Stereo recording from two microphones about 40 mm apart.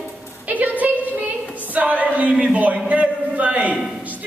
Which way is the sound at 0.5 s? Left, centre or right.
Right.